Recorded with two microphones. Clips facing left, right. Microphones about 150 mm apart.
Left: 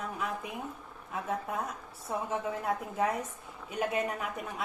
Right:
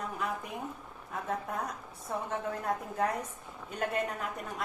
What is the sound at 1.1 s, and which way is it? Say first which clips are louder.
A woman's voice: left 1 dB; 5° left (ahead or behind).